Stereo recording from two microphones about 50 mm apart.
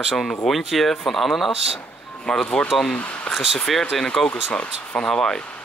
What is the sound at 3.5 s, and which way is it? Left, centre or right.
Speech, centre.